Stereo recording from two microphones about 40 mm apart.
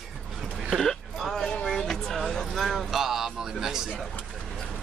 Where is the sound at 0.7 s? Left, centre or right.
Centre.